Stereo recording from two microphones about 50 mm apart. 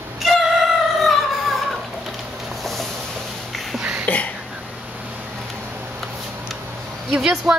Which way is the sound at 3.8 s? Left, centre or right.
Right.